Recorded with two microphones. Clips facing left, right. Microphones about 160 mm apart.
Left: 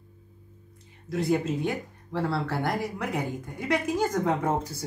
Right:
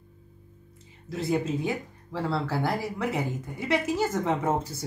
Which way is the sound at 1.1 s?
Centre (ahead or behind).